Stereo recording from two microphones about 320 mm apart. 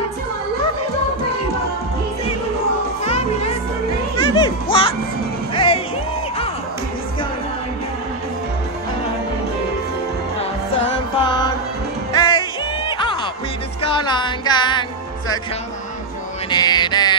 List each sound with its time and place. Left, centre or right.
3.0 s music: centre
12.1 s music: centre
16.4 s mantra: centre